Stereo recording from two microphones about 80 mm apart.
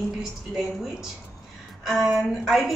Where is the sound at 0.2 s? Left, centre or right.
Centre.